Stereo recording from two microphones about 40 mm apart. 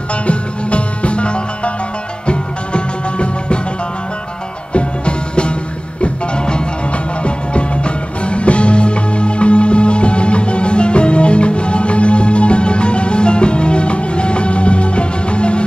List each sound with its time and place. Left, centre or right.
0.1 s music: left
4.7 s music: left